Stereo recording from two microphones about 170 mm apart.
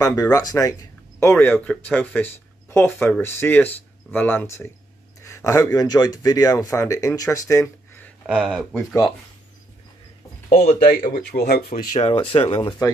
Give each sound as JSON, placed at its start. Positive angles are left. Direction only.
{"t": 0.0, "sound": "speech", "side_deg": 20}
{"t": 1.4, "sound": "speech", "side_deg": 10}
{"t": 8.3, "sound": "speech", "side_deg": -5}
{"t": 10.5, "sound": "speech", "side_deg": 45}
{"t": 11.3, "sound": "speech", "side_deg": 70}
{"t": 11.9, "sound": "speech", "side_deg": 35}